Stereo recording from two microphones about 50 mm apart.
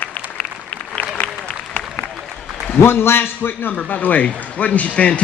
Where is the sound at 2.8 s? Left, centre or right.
Left.